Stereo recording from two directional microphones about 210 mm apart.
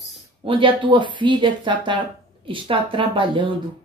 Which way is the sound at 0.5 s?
25° right (ahead or behind).